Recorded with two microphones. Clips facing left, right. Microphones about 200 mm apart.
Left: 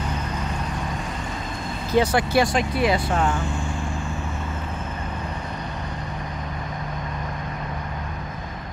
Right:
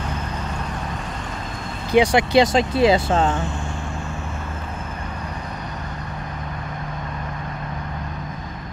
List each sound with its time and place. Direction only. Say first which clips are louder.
1.9 s speech: right 4 dB; 15° right (ahead or behind)